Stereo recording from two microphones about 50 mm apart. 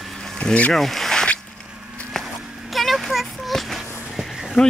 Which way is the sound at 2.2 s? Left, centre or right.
Centre.